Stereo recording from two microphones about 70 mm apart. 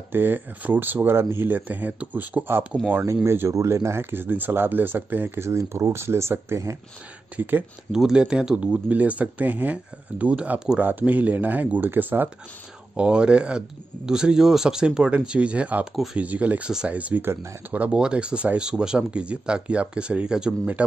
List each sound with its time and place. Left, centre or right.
0.1 s speech: right
3.3 s speech: right
5.5 s speech: right
7.3 s speech: right
7.9 s speech: centre; by 12.3 s right
12.9 s speech: centre
17.2 s speech: right
17.6 s speech: right